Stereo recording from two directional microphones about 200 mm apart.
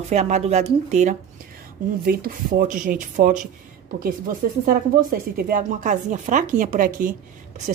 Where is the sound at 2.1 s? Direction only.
45° right (ahead or behind).